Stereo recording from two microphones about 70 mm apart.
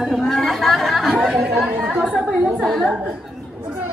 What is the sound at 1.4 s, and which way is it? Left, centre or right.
Speech, centre.